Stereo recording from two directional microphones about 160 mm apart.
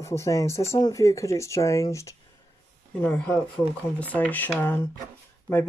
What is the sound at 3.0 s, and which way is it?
Speech, 5° left (ahead or behind).